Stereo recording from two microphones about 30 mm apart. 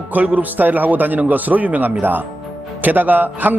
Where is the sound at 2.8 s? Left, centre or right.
Right.